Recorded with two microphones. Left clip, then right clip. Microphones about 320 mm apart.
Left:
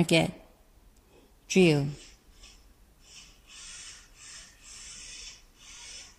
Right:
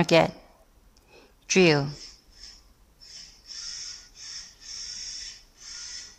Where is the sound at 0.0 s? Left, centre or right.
Centre.